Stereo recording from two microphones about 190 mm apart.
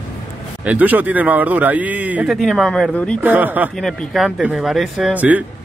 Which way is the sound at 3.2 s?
10° right (ahead or behind).